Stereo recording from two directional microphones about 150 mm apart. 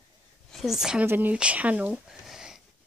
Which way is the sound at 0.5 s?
Centre (ahead or behind).